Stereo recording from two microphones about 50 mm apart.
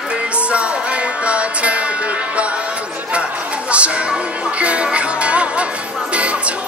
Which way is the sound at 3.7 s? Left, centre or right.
Right.